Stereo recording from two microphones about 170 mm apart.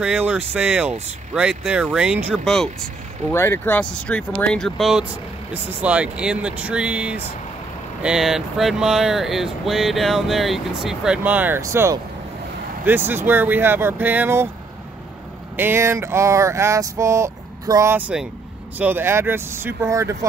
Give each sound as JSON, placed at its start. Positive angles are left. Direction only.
{"t": 0.0, "sound": "speech", "side_deg": -10}
{"t": 3.3, "sound": "speech", "side_deg": 15}
{"t": 15.5, "sound": "speech", "side_deg": -15}